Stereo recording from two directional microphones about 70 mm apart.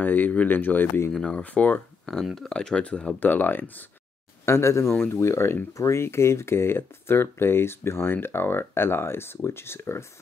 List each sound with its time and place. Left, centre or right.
0.0 s speech: left
1.1 s speech: centre
2.2 s speech: centre
3.2 s speech: left
4.5 s speech: left